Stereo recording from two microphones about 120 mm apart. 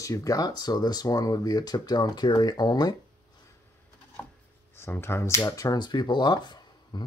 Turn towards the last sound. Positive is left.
turn(degrees=35)  # may be behind; listen again after turning